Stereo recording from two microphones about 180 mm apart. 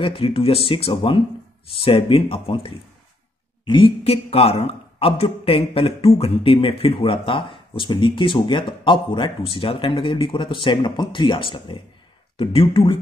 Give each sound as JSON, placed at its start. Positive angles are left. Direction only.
{"t": 0.0, "sound": "speech", "side_deg": 30}